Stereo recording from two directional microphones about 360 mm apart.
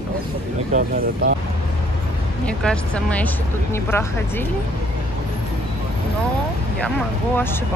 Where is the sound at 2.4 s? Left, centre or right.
Centre.